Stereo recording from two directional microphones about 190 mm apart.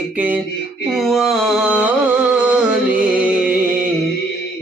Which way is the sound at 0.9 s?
Centre (ahead or behind).